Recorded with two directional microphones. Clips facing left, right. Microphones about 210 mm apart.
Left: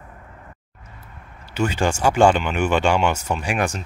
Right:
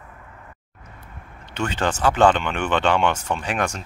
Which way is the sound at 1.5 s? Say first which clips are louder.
Left 3 dB; 10° left (ahead or behind).